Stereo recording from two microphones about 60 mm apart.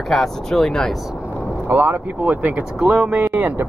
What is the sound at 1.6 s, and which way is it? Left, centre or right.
Speech, right.